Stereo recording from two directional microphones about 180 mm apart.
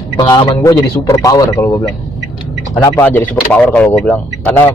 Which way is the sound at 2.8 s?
10° left (ahead or behind).